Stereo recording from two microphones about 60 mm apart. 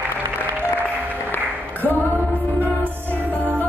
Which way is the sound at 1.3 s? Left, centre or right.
Left.